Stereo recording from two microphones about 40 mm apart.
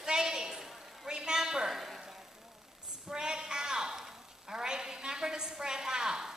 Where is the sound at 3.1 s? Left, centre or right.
Centre.